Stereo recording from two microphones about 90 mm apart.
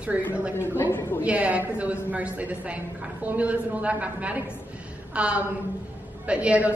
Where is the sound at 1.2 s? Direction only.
15° right (ahead or behind).